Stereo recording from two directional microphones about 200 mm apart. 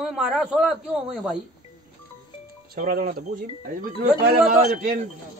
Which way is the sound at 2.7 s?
45° right (ahead or behind).